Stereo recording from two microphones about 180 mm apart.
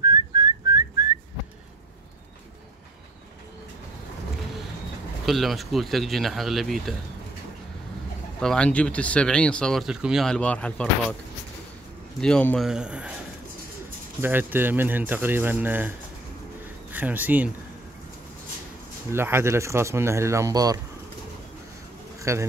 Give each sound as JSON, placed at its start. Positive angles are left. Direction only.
{"t": 0.0, "sound": "whistling", "side_deg": -20}
{"t": 5.2, "sound": "speech", "side_deg": 0}
{"t": 8.4, "sound": "speech", "side_deg": 5}
{"t": 12.2, "sound": "speech", "side_deg": 5}
{"t": 14.2, "sound": "speech", "side_deg": -10}
{"t": 16.9, "sound": "speech", "side_deg": -10}
{"t": 19.1, "sound": "speech", "side_deg": -15}
{"t": 22.2, "sound": "speech", "side_deg": -15}